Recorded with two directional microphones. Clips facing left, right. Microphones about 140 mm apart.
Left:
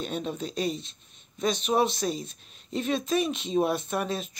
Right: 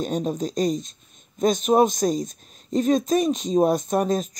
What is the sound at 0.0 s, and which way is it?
Speech, 40° right (ahead or behind).